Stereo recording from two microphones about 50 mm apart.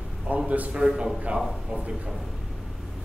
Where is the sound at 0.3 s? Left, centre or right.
Right.